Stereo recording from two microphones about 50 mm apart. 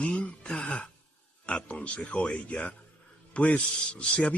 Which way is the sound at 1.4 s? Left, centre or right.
Left.